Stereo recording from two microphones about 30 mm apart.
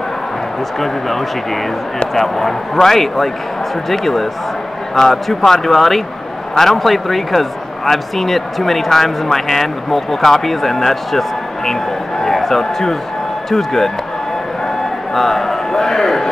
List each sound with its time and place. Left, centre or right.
0.7 s a man's voice: centre
15.1 s a man's voice: centre